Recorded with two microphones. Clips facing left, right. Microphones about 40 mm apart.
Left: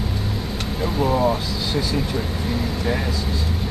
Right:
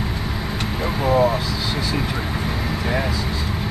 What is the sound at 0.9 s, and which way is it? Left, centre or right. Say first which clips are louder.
Vehicle: right 2 dB; centre.